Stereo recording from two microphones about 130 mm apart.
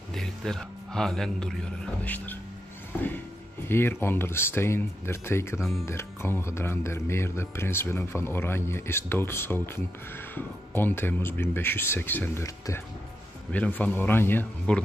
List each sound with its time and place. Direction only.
0.1 s speech: 5° left (ahead or behind)